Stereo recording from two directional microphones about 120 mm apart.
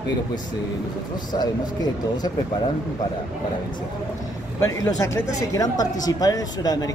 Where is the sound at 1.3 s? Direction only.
40° left (ahead or behind).